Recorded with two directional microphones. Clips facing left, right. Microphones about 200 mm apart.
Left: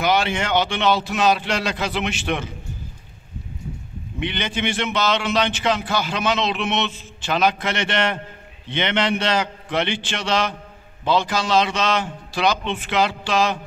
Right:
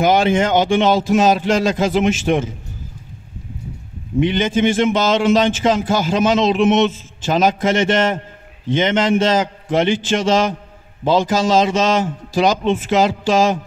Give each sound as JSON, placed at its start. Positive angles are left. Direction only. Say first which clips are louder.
{"t": 0.0, "sound": "a man's voice", "louder": "right 7 dB", "side_deg": -45}
{"t": 4.2, "sound": "a man's voice", "louder": "right 10 dB", "side_deg": -40}